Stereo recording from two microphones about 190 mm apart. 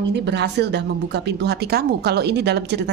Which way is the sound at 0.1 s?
65° right (ahead or behind).